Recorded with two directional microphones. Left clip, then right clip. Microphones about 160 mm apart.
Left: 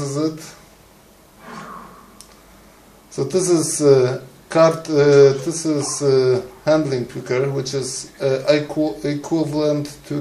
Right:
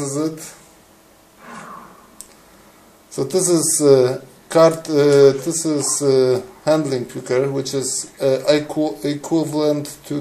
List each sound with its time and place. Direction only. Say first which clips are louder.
0.0 s speech: even; 30° right (ahead or behind)
3.2 s speech: even; 30° right (ahead or behind)